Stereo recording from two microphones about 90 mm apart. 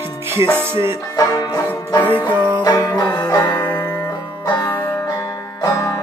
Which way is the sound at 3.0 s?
45° left (ahead or behind).